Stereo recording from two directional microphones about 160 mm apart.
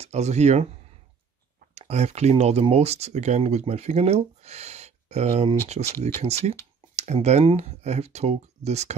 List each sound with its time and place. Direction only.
0.0 s speech: 45° right (ahead or behind)
1.8 s speech: 40° right (ahead or behind)